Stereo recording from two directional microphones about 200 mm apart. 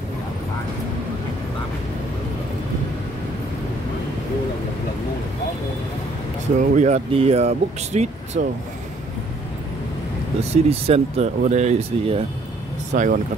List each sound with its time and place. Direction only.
6.6 s speech: 40° right (ahead or behind)
10.5 s speech: 30° right (ahead or behind)